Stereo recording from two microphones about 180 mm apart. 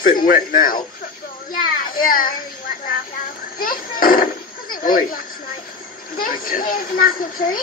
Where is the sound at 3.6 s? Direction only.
50° left (ahead or behind).